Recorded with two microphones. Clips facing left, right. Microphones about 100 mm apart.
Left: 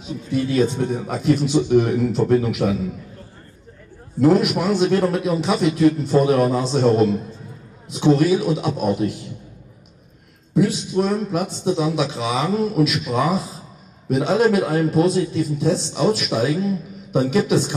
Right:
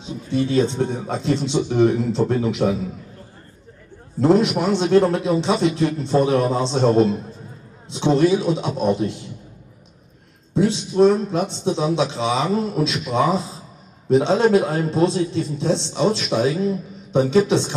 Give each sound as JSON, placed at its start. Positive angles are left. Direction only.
{"t": 0.0, "sound": "a man's voice", "side_deg": -25}
{"t": 4.2, "sound": "a man's voice", "side_deg": -25}
{"t": 10.5, "sound": "a man's voice", "side_deg": -25}